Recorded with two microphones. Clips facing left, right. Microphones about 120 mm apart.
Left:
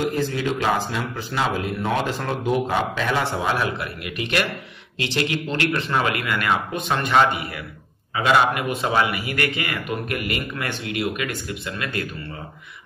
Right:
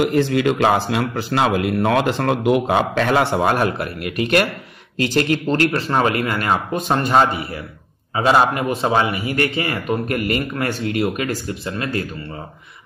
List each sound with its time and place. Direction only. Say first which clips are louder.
0.0 s a man's voice: right 7 dB; 80° right; by 12.1 s 30° right (ahead or behind)